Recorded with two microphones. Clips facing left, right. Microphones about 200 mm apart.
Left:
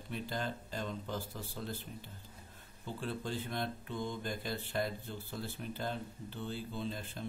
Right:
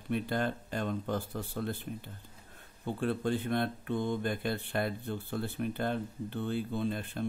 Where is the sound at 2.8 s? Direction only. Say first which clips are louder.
Right 8 dB; 55° right (ahead or behind).